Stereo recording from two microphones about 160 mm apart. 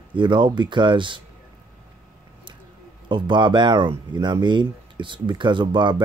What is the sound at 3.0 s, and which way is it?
Speech, 30° right (ahead or behind).